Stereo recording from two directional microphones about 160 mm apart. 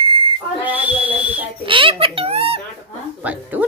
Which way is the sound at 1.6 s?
30° right (ahead or behind).